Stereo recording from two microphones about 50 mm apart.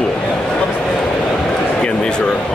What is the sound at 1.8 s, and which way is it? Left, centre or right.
Speech, centre.